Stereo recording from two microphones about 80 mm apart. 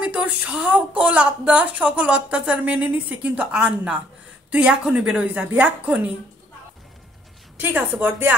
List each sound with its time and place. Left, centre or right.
0.0 s a woman's voice: centre
7.6 s a woman's voice: right